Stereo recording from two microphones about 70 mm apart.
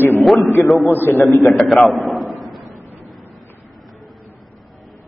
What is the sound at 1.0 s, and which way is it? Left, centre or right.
Speech, left.